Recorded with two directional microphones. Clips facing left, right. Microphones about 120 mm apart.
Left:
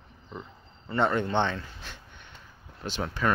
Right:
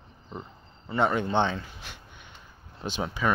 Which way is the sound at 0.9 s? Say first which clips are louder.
Right 1 dB; 10° right (ahead or behind).